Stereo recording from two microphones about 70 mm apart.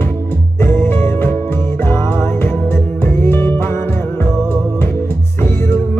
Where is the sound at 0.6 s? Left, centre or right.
Left.